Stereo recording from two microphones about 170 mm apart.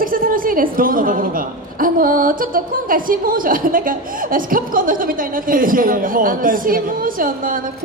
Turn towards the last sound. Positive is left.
turn(degrees=-55)  # may be behind; listen again after turning